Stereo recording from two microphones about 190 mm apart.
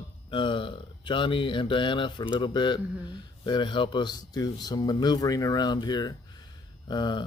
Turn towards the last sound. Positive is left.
turn(degrees=25)  # may be behind; listen again after turning